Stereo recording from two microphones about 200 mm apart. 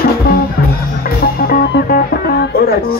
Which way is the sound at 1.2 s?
50° left (ahead or behind).